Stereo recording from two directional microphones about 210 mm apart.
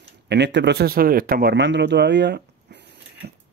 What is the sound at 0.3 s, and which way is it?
A man's voice, 55° right (ahead or behind).